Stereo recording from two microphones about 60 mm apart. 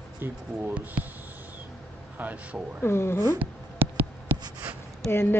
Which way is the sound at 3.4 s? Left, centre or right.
Right.